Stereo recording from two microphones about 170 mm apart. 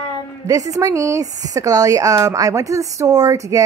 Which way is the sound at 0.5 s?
20° right (ahead or behind).